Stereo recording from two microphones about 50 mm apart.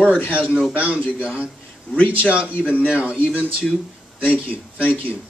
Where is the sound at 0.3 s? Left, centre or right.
Right.